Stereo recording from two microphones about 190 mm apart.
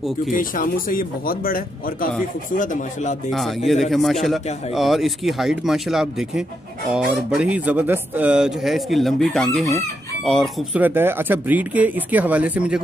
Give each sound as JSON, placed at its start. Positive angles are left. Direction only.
{"t": 0.3, "sound": "speech", "side_deg": 45}
{"t": 3.3, "sound": "speech", "side_deg": 0}
{"t": 10.8, "sound": "speech", "side_deg": -10}